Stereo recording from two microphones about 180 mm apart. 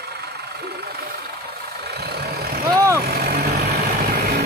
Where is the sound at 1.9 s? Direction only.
65° right (ahead or behind).